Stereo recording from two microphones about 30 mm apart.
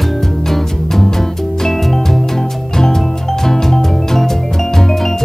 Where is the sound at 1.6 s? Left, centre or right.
Centre.